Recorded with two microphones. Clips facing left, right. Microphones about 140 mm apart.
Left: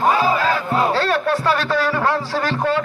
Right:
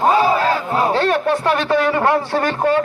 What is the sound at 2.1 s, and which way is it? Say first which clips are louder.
Speech: right 3 dB; 55° right (ahead or behind).